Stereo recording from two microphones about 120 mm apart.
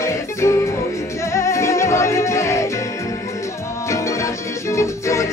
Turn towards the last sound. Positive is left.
turn(degrees=25)  # may be behind; listen again after turning